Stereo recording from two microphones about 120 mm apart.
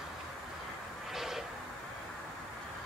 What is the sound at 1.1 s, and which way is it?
Vehicle, centre (ahead or behind).